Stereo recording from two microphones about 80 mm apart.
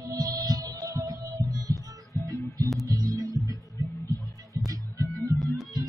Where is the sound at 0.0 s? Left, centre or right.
Right.